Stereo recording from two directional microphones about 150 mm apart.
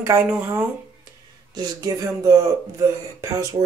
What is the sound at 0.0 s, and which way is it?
Speech, 15° right (ahead or behind).